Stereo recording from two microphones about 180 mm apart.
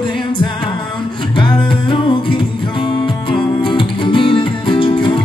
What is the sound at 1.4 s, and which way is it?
Music, 25° left (ahead or behind).